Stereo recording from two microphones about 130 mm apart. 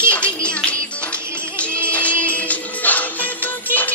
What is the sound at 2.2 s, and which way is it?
Music, 10° left (ahead or behind).